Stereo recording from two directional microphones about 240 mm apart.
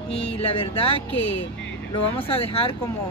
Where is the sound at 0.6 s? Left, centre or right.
Left.